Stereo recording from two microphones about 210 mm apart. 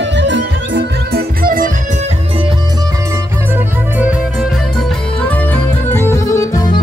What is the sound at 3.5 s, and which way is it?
Music, 5° right (ahead or behind).